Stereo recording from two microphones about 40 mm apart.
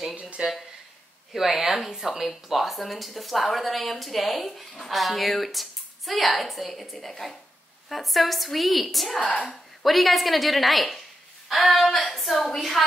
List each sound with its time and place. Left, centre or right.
0.4 s speech: right
1.3 s speech: centre
9.2 s speech: left
9.5 s speech: centre